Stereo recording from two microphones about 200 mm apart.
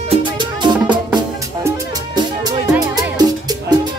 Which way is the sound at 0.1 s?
25° right (ahead or behind).